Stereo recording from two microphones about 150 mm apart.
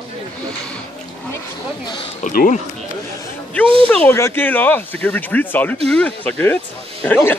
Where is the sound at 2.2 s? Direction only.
60° left (ahead or behind).